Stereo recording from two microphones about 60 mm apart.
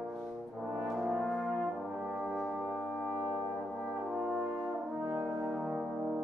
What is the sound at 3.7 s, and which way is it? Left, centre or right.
Brass instrument, centre.